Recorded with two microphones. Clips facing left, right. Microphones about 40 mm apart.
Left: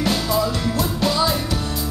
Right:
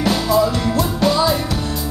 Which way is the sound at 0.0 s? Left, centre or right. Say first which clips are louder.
Right 4 dB; centre.